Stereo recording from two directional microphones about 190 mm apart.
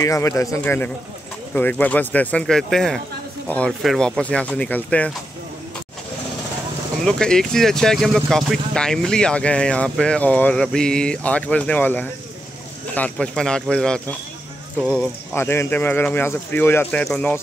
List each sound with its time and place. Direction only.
0.0 s speech: 15° left (ahead or behind)
7.1 s speech: 5° left (ahead or behind)